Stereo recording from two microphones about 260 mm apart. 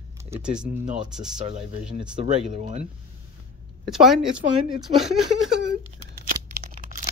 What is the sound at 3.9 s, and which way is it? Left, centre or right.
Speech, centre.